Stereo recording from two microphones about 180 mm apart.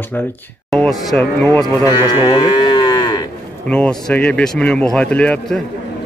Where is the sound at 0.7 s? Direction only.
Centre (ahead or behind).